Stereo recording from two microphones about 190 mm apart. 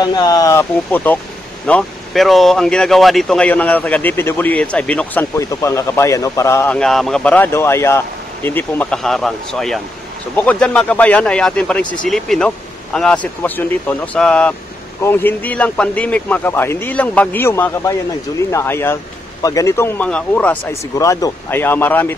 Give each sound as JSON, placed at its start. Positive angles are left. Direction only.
{"t": 0.0, "sound": "speech", "side_deg": 20}
{"t": 21.0, "sound": "speech", "side_deg": 15}